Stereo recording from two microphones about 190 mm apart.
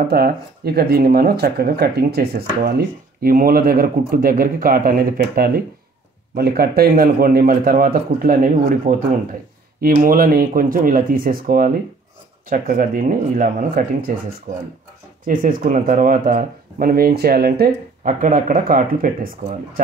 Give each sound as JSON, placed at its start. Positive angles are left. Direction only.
{"t": 0.1, "sound": "speech", "side_deg": -55}